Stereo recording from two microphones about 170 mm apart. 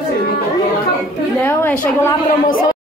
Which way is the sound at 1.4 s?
10° left (ahead or behind).